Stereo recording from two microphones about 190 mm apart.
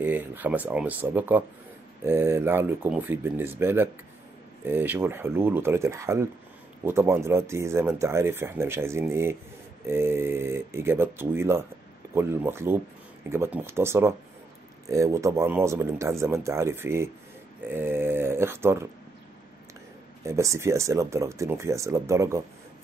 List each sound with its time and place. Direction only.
0.0 s speech: 10° right (ahead or behind)
20.2 s speech: 15° right (ahead or behind)